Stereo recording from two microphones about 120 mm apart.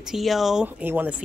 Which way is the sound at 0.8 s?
15° right (ahead or behind).